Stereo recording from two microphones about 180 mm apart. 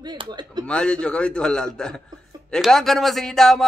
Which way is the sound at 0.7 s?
5° left (ahead or behind).